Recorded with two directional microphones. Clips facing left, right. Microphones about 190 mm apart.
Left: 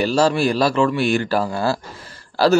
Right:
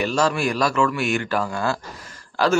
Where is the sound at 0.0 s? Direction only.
35° left (ahead or behind).